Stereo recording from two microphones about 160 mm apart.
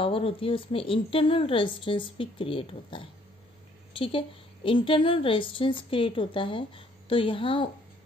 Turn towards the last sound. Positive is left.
turn(degrees=35)  # may be behind; listen again after turning